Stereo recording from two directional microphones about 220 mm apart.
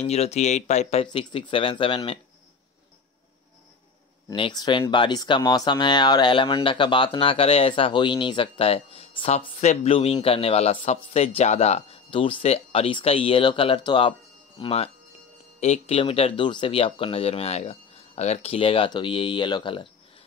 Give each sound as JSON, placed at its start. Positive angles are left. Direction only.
{"t": 0.0, "sound": "speech", "side_deg": 30}
{"t": 4.3, "sound": "speech", "side_deg": 20}